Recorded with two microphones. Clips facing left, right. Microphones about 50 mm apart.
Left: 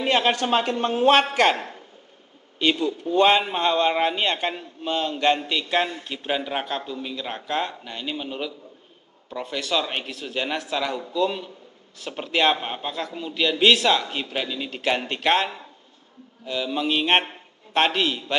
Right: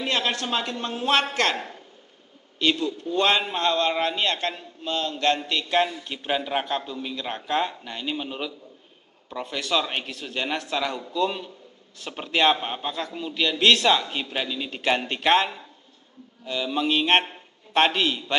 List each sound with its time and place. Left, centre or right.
0.0 s a man's voice: left
1.2 s a man's voice: centre
5.5 s a man's voice: centre